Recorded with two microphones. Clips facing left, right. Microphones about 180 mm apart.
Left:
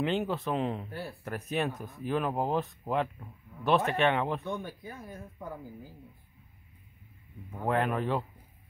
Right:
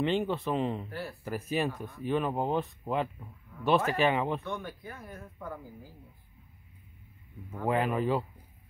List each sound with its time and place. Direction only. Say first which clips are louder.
0.0 s speech: right 1 dB; centre (ahead or behind)
0.8 s speech: right 1 dB; 25° left (ahead or behind)
1.2 s speech: right 1 dB; centre (ahead or behind)
4.6 s speech: even; 15° left (ahead or behind)
7.6 s speech: right 1 dB; centre (ahead or behind)